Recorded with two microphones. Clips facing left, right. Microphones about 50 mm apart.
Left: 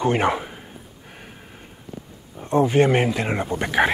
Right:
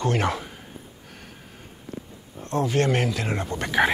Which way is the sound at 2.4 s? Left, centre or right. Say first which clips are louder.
Left 6 dB; centre.